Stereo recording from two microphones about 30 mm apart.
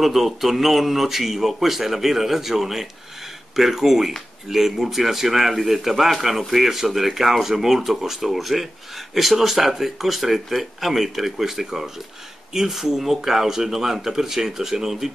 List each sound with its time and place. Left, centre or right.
0.0 s speech: centre